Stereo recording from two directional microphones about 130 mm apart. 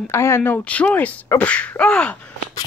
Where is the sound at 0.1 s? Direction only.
20° left (ahead or behind).